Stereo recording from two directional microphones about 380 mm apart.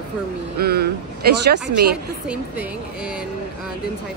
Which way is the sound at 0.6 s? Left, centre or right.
Right.